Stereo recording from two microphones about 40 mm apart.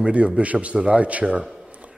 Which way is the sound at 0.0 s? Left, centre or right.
Right.